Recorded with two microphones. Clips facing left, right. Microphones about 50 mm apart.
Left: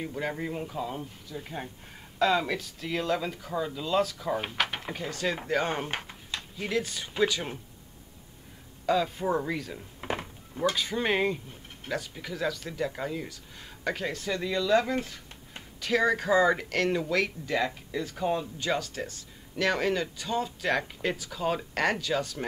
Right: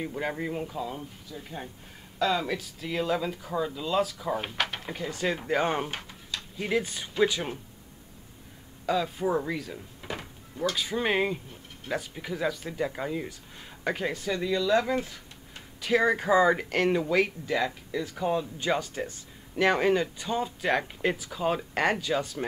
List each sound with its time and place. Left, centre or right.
0.0 s speech: centre
0.7 s speech: centre
5.1 s speech: centre
5.9 s a sound: left
6.7 s speech: centre
8.8 s speech: centre
9.9 s a sound: left
10.8 s speech: centre
17.6 s speech: centre
18.6 s speech: centre